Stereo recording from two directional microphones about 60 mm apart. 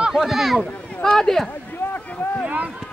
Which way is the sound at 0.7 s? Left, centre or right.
Centre.